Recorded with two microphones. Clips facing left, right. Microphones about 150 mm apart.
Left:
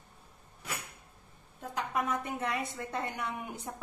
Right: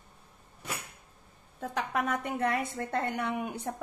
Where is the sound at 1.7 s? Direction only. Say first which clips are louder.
Right 2 dB; 65° right (ahead or behind).